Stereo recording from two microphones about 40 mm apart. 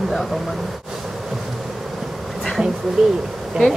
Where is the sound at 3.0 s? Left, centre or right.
Centre.